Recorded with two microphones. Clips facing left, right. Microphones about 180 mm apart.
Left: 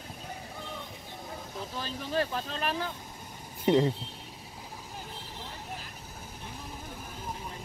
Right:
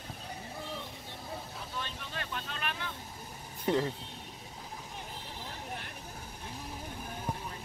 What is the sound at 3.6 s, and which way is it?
Speech, 15° left (ahead or behind).